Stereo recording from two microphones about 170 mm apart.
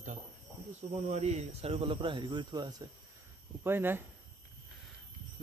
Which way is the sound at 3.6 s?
15° right (ahead or behind).